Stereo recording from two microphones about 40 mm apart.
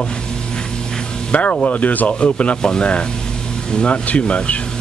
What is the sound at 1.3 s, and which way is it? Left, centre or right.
Speech, left.